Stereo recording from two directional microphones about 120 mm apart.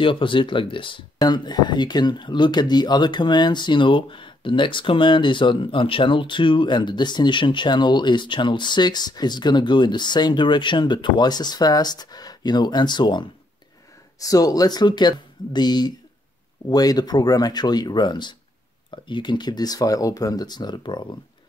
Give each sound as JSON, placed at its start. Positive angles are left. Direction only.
{"t": 0.0, "sound": "speech", "side_deg": 45}
{"t": 14.2, "sound": "speech", "side_deg": 30}